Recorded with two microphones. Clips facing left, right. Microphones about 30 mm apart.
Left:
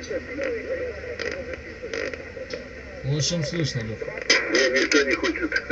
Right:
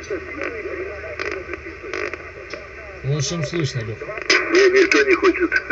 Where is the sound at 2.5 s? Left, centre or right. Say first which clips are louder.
Right 2 dB; right.